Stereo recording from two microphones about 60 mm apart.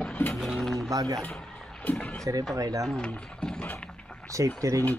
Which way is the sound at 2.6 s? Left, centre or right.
Right.